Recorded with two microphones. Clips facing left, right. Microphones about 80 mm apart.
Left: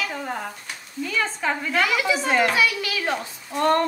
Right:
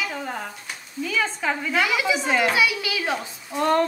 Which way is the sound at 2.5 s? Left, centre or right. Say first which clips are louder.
Even; centre.